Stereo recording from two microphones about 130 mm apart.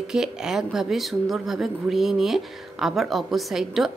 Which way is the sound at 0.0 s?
5° right (ahead or behind).